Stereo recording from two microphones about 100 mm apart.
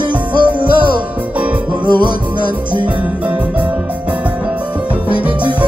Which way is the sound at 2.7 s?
55° right (ahead or behind).